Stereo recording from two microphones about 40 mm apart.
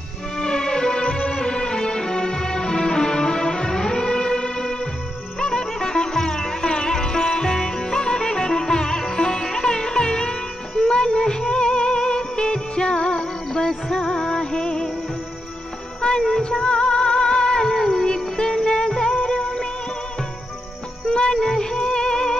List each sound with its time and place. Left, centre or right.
0.4 s music: centre
5.4 s sitar: centre
16.0 s music: centre
21.1 s music: left